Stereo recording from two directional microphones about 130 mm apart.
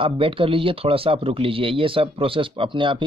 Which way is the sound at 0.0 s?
45° right (ahead or behind).